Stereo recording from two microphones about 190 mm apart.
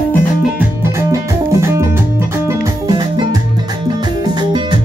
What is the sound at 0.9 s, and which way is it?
Music, 15° right (ahead or behind).